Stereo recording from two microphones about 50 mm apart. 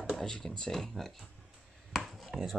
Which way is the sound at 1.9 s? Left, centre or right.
Centre.